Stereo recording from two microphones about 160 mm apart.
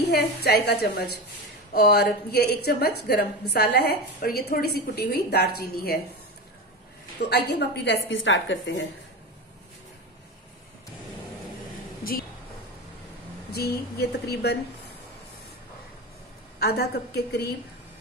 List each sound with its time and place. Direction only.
0.0 s a woman's voice: 90° left; by 5.9 s 75° left (ahead or behind)
7.2 s a woman's voice: 90° left
12.0 s speech: 65° left (ahead or behind)
13.5 s a woman's voice: 80° left
16.5 s a woman's voice: 85° left